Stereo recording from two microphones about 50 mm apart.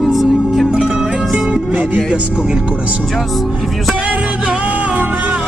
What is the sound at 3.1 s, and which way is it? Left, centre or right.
Speech, centre.